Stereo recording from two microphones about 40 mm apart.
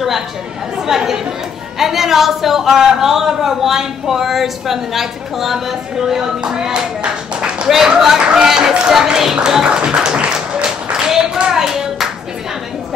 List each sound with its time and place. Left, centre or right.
0.8 s speech: centre
8.2 s speech: right
8.5 s speech: centre
9.7 s speech: right
9.9 s a sound: right